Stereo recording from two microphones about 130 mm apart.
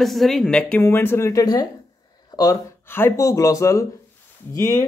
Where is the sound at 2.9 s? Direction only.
15° left (ahead or behind).